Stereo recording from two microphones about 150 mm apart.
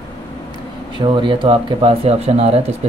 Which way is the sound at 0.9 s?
30° right (ahead or behind).